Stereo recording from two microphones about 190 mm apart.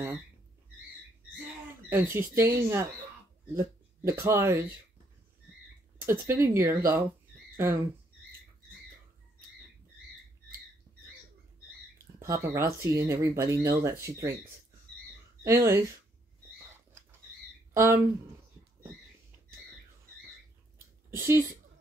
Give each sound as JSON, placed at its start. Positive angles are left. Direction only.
{"t": 1.9, "sound": "speech", "side_deg": -10}
{"t": 5.9, "sound": "speech", "side_deg": -15}
{"t": 12.2, "sound": "speech", "side_deg": -15}
{"t": 15.4, "sound": "speech", "side_deg": -15}
{"t": 17.7, "sound": "speech", "side_deg": -15}
{"t": 21.1, "sound": "speech", "side_deg": -15}